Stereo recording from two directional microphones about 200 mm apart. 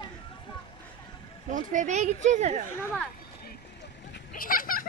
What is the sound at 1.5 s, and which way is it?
Speech, 40° right (ahead or behind).